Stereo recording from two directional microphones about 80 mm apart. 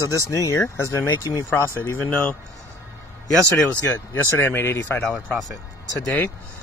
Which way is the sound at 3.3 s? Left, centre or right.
Right.